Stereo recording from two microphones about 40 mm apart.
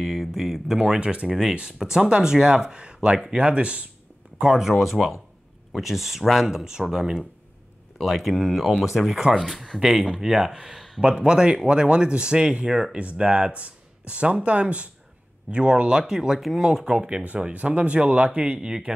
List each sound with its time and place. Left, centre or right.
0.0 s speech: centre
1.5 s speech: right
1.8 s speech: centre
4.6 s speech: centre
6.5 s speech: centre
8.0 s speech: centre
11.0 s speech: right
12.9 s speech: right
16.0 s speech: centre
16.3 s speech: centre
16.6 s speech: centre
17.5 s speech: right
18.6 s speech: centre